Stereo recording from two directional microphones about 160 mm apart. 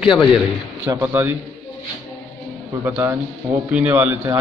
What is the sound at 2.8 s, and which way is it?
A man's voice, 15° right (ahead or behind).